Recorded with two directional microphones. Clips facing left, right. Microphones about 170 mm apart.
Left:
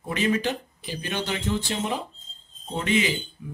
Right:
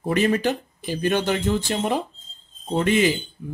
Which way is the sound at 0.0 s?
45° right (ahead or behind).